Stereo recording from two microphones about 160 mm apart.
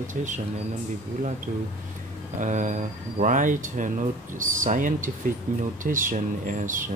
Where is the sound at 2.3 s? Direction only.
50° right (ahead or behind).